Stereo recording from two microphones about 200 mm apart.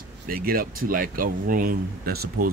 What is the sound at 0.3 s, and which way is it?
Speech, 45° right (ahead or behind).